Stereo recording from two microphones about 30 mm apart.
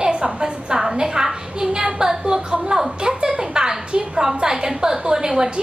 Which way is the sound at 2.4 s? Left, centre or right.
Right.